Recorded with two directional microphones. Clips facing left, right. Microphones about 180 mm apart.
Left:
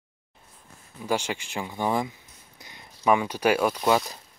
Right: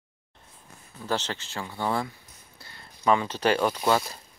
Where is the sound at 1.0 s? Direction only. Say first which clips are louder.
Left 2 dB; 10° left (ahead or behind).